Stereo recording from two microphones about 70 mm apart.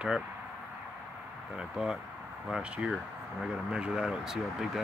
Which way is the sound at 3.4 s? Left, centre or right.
Centre.